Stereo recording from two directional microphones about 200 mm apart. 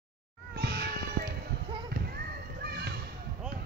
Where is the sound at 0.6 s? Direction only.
50° right (ahead or behind).